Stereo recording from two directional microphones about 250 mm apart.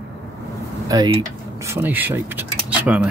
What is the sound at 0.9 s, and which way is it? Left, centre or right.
Speech, centre.